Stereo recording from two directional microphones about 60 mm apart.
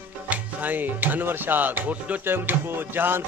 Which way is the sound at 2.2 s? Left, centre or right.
Right.